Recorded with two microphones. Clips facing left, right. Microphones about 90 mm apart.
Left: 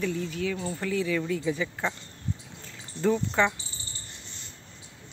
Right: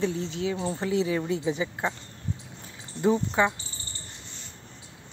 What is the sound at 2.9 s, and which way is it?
Speech, 15° right (ahead or behind).